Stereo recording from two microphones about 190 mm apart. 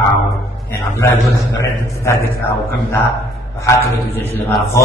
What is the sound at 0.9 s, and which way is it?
Speech, 15° left (ahead or behind).